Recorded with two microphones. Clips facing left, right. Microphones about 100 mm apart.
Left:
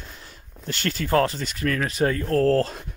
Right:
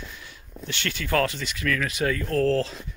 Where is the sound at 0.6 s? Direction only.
40° left (ahead or behind).